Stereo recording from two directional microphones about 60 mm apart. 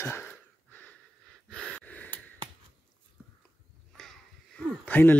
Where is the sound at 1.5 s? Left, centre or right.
Centre.